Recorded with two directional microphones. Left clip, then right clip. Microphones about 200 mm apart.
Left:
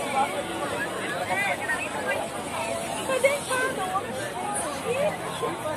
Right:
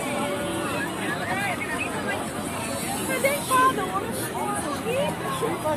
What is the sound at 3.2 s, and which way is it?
Speech, 45° right (ahead or behind).